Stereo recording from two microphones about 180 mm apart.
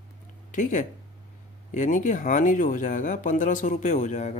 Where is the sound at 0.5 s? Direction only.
45° left (ahead or behind).